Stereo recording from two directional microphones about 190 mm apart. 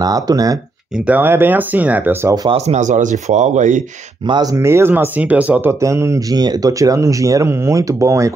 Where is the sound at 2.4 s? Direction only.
35° right (ahead or behind).